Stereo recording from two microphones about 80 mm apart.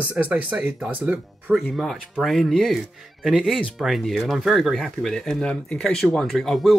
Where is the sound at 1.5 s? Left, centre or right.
Centre.